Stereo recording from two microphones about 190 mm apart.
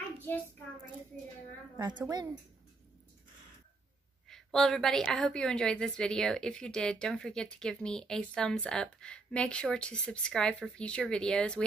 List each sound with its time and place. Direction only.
1.8 s a woman's voice: 20° right (ahead or behind)
4.3 s a woman's voice: 5° left (ahead or behind)